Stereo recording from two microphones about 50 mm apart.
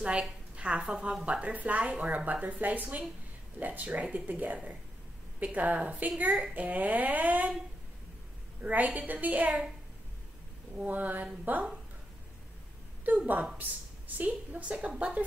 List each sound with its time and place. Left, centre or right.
0.6 s speech: right
6.2 s a woman's voice: centre
6.5 s speech: right
8.6 s speech: right
10.9 s speech: right
13.0 s a woman's voice: right